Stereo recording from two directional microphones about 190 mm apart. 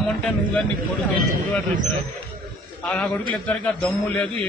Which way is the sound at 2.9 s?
5° left (ahead or behind).